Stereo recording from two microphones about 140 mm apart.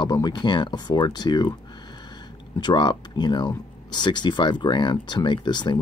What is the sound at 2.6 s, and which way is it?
Speech, 30° left (ahead or behind).